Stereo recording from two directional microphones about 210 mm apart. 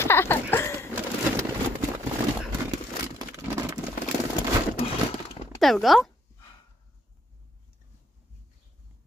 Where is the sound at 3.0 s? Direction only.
15° right (ahead or behind).